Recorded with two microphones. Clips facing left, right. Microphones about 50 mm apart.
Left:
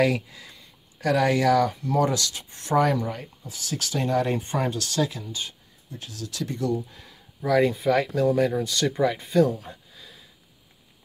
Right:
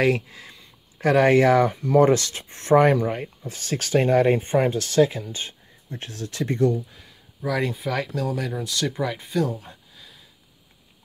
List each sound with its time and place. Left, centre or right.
0.0 s speech: right
5.9 s speech: right
6.9 s speech: centre